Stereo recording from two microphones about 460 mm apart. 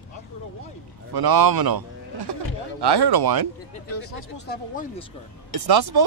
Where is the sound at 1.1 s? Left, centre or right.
Right.